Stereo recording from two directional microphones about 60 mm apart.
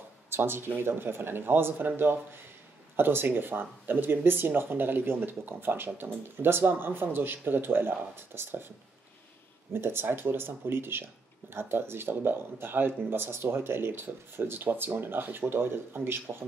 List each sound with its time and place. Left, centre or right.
0.3 s speech: right